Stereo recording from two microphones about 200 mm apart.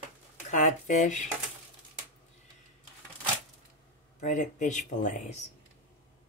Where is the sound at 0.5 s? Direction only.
40° left (ahead or behind).